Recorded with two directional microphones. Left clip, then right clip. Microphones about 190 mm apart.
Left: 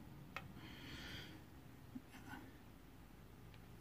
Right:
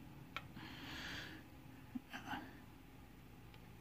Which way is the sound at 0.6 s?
25° right (ahead or behind).